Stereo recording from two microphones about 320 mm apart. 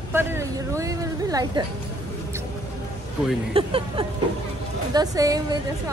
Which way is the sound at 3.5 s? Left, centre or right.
Centre.